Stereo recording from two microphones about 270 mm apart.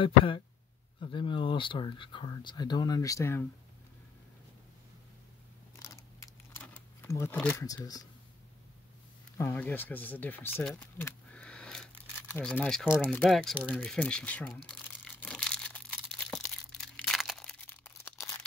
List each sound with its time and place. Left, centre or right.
0.0 s speech: centre
5.8 s keys jangling: centre
9.4 s speech: centre
16.3 s a sound: centre